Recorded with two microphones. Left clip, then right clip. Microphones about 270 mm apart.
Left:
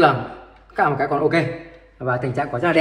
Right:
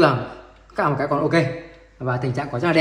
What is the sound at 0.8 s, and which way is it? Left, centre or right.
A man's voice, centre.